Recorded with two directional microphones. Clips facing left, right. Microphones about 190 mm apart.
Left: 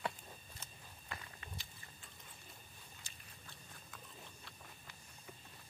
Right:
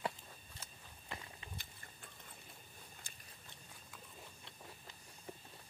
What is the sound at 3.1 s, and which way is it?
Biting, 50° right (ahead or behind).